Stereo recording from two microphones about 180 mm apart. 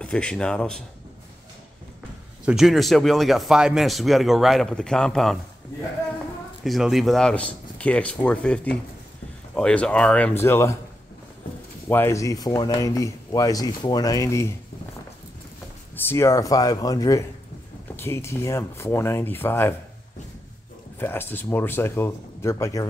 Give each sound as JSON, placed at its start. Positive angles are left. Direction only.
{"t": 0.0, "sound": "speech", "side_deg": 5}
{"t": 2.4, "sound": "speech", "side_deg": 0}
{"t": 6.6, "sound": "speech", "side_deg": 0}
{"t": 11.9, "sound": "speech", "side_deg": 15}
{"t": 16.0, "sound": "speech", "side_deg": 15}
{"t": 21.0, "sound": "speech", "side_deg": 10}